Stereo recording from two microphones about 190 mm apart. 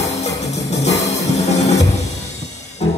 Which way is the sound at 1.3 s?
35° left (ahead or behind).